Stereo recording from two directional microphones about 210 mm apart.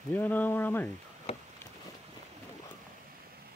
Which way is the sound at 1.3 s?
30° left (ahead or behind).